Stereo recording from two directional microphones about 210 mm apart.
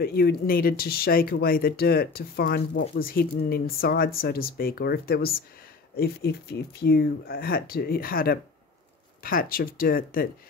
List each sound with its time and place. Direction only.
0.0 s speech: 45° left (ahead or behind)